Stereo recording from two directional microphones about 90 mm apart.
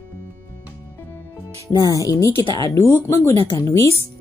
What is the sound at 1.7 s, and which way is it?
A woman's voice, 45° left (ahead or behind).